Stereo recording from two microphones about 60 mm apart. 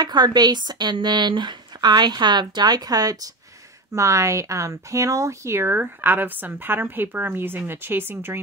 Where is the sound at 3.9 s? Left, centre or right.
Right.